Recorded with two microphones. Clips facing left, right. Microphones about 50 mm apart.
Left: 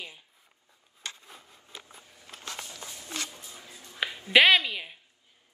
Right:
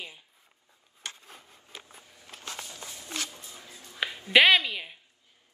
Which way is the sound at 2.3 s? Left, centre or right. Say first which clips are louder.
Even; left.